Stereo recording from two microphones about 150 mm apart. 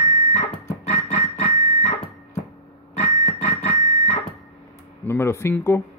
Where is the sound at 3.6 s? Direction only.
45° left (ahead or behind).